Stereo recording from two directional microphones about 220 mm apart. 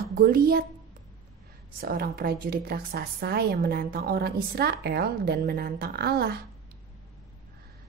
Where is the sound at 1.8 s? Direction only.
45° right (ahead or behind).